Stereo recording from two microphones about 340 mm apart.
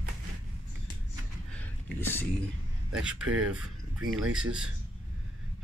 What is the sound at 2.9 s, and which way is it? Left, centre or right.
Speech, centre.